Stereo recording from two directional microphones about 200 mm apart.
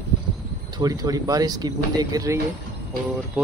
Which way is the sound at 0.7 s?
20° right (ahead or behind).